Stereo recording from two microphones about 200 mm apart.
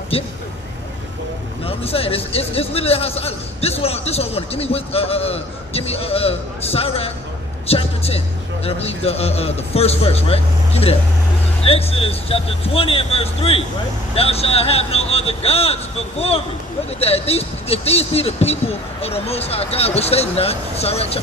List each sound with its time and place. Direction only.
0.1 s a man's voice: 30° left (ahead or behind)
1.7 s a man's voice: 30° left (ahead or behind)